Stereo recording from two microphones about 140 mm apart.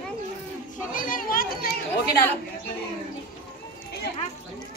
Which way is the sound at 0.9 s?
75° left (ahead or behind).